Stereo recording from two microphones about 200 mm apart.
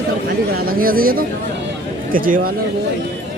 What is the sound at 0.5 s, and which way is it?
Speech, 45° right (ahead or behind).